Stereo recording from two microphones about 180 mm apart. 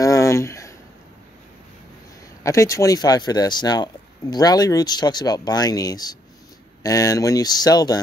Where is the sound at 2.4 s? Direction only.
15° left (ahead or behind).